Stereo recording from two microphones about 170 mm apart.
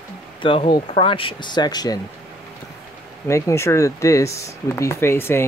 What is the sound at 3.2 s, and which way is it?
Speech, 15° left (ahead or behind).